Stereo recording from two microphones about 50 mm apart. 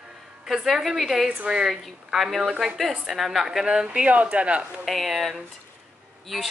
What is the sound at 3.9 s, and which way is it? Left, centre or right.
Speech, right.